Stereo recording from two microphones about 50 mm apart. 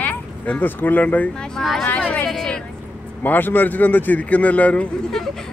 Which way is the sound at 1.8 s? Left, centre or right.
Left.